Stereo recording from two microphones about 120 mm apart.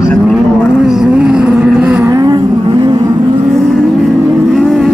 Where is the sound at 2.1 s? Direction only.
35° right (ahead or behind).